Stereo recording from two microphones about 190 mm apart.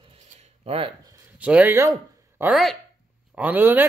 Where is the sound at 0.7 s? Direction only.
30° right (ahead or behind).